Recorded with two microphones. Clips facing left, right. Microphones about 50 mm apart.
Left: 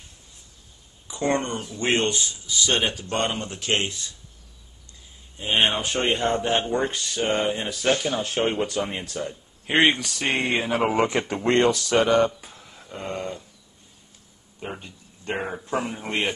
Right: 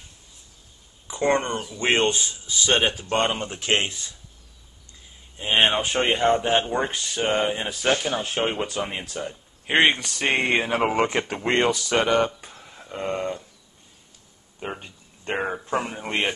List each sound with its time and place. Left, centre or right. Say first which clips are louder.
1.0 s speech: right 2 dB; right
5.4 s speech: right 2 dB; centre
10.3 s speech: right 2 dB; right
10.9 s speech: even; centre
12.6 s a sound: right 4 dB; centre
14.6 s a sound: right 2 dB; right
15.3 s speech: right 2 dB; centre